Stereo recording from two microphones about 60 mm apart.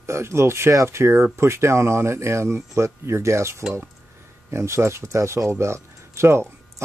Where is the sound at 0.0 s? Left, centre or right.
Right.